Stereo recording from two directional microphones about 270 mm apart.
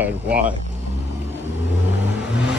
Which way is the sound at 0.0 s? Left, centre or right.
Centre.